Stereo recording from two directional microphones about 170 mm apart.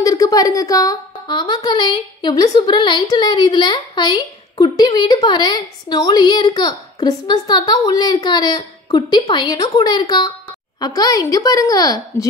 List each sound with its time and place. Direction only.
0.0 s a woman's voice: 20° left (ahead or behind)